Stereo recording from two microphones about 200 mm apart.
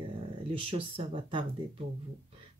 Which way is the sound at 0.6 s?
30° right (ahead or behind).